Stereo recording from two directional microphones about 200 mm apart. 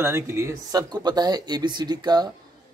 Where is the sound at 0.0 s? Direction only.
15° right (ahead or behind).